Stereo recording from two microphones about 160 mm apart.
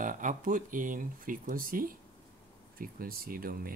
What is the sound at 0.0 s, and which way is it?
Speech, 55° right (ahead or behind).